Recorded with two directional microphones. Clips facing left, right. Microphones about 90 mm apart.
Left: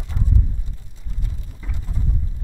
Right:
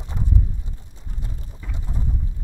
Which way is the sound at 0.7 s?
25° right (ahead or behind).